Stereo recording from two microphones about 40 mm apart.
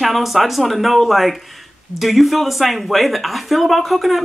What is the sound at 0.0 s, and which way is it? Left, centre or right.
Speech, centre.